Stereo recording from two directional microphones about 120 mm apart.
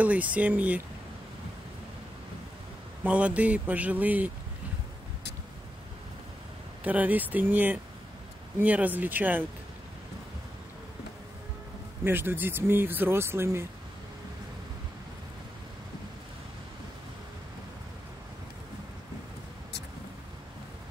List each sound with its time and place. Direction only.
0.0 s speech: 10° right (ahead or behind)
3.0 s speech: 10° right (ahead or behind)
6.8 s speech: 15° right (ahead or behind)
12.0 s speech: 20° right (ahead or behind)